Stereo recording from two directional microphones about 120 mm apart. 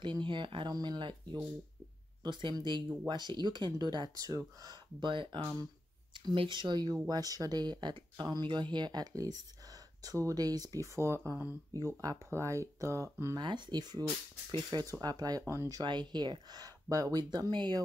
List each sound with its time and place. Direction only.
0.0 s speech: 40° right (ahead or behind); by 13.4 s 25° right (ahead or behind)
13.4 s speech: 40° right (ahead or behind)
15.8 s speech: 40° right (ahead or behind)